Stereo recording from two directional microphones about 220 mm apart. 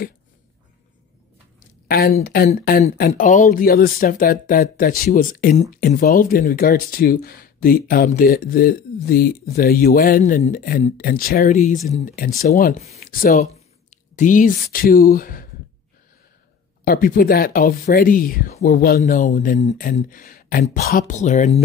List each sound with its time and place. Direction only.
1.9 s speech: 45° left (ahead or behind)
16.8 s speech: 40° left (ahead or behind)